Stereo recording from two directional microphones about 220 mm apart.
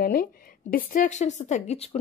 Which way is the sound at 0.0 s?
40° left (ahead or behind).